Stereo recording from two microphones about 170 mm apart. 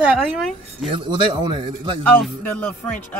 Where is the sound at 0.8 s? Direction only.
30° right (ahead or behind).